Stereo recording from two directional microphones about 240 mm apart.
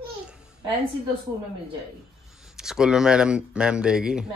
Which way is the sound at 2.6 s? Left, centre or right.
Centre.